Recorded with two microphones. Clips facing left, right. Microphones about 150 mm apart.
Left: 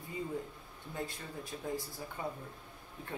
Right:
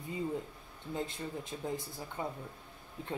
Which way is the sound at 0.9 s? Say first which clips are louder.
Right 3 dB; 20° right (ahead or behind).